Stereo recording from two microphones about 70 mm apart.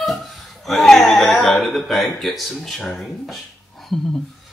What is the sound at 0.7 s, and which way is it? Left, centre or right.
Speech, centre.